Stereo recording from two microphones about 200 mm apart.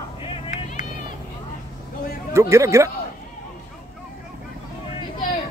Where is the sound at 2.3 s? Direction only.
15° right (ahead or behind).